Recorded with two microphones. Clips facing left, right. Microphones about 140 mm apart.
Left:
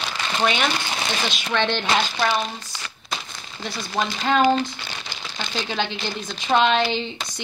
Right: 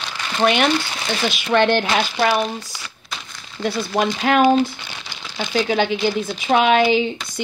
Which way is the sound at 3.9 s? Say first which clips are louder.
Right 3 dB; 10° right (ahead or behind).